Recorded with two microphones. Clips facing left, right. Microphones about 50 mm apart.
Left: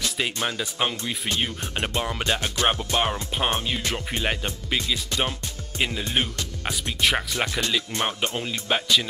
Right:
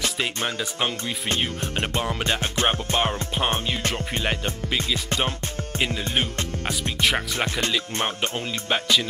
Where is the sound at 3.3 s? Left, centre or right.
Centre.